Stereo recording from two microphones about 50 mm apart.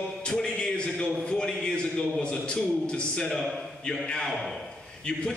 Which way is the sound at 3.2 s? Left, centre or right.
Centre.